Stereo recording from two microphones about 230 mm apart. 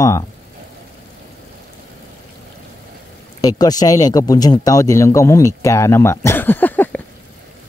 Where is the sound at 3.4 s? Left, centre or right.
Centre.